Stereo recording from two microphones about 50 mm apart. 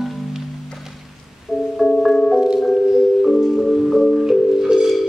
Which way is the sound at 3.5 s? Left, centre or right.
Centre.